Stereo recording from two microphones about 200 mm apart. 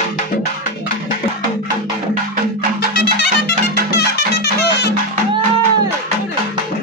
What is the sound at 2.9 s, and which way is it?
Music, 55° left (ahead or behind).